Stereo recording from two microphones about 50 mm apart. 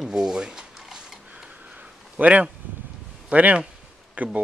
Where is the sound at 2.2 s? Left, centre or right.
Right.